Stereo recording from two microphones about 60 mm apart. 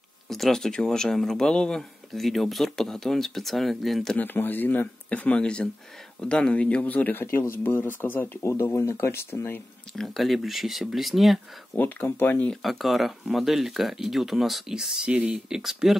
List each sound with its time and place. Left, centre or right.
0.3 s speech: centre
4.2 s speech: left
5.4 s speech: centre; by 8.4 s left
8.4 s speech: left
9.9 s speech: centre
11.7 s speech: left
12.6 s speech: centre
15.3 s speech: centre